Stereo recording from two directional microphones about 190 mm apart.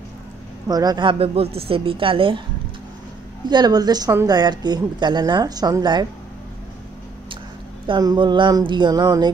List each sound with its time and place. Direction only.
0.7 s speech: 20° right (ahead or behind)
3.4 s speech: 20° right (ahead or behind)
7.8 s speech: 20° right (ahead or behind)